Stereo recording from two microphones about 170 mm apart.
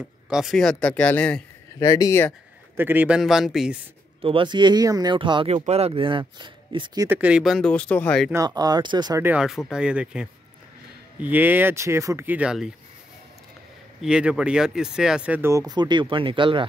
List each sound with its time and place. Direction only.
0.3 s speech: centre (ahead or behind)
1.8 s speech: 20° left (ahead or behind)
2.8 s speech: 10° right (ahead or behind)
4.2 s speech: 30° right (ahead or behind)
7.1 s speech: 10° right (ahead or behind)
8.3 s speech: 20° right (ahead or behind)
9.2 s speech: 5° right (ahead or behind)
14.0 s speech: 5° right (ahead or behind); by 16.6 s 30° right (ahead or behind)